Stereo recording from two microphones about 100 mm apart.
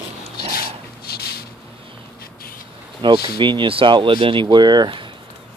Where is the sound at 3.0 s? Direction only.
50° right (ahead or behind).